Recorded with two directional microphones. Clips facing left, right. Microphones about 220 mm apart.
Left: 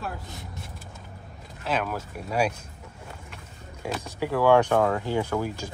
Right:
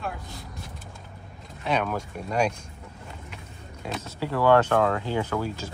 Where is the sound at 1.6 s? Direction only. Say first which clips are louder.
Right 2 dB; 5° left (ahead or behind).